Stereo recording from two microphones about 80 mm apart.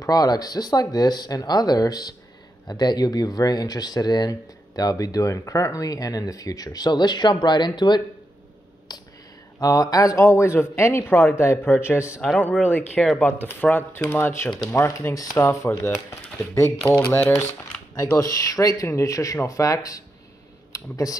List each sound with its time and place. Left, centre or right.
0.0 s speech: left
9.6 s speech: left
12.4 s speech: left
17.0 s speech: left
18.1 s speech: left